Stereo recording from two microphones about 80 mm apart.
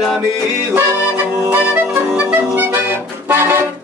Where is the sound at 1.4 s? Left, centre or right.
Right.